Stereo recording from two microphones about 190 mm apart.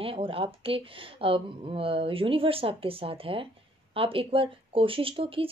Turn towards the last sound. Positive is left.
turn(degrees=-30)  # may be behind; listen again after turning